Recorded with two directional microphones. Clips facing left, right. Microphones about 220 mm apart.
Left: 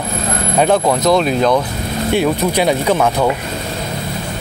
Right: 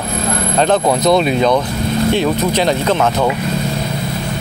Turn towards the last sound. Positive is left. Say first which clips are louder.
# even
turn(degrees=10)  # may be behind; listen again after turning